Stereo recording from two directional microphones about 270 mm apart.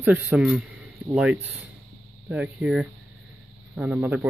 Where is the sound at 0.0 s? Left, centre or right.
Centre.